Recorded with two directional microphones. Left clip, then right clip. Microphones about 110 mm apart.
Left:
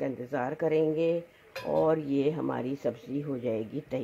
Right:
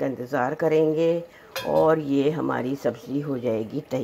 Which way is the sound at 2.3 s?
15° left (ahead or behind).